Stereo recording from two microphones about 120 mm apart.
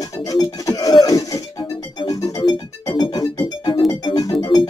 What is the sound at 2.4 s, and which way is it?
Music, 35° left (ahead or behind).